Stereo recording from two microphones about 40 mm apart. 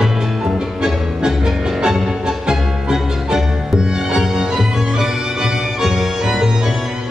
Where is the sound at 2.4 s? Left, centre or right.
Centre.